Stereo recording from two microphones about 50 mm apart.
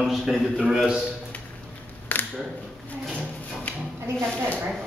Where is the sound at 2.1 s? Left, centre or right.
Left.